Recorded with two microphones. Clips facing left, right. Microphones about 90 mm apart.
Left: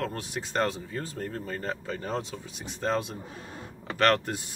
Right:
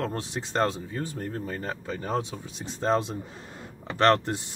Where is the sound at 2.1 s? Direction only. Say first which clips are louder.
Right 6 dB; 25° right (ahead or behind).